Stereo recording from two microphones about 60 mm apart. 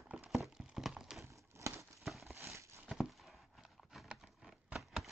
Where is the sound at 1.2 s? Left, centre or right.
Right.